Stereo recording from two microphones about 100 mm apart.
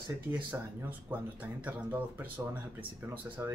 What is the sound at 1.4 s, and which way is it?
Speech, 15° right (ahead or behind).